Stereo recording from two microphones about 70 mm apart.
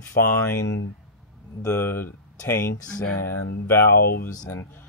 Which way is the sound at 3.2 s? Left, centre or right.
Left.